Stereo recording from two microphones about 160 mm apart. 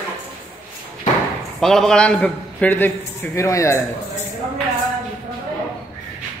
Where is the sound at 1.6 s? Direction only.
5° left (ahead or behind); by 3.8 s 20° left (ahead or behind).